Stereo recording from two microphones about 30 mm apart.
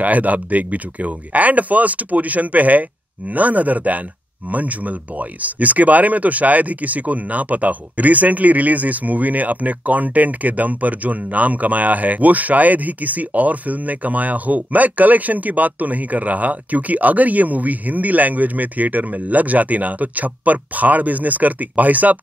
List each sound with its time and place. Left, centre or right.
0.0 s speech: right